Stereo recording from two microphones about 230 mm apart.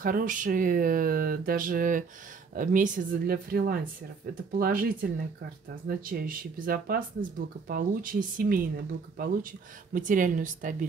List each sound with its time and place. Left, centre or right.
0.0 s speech: right
9.9 s speech: right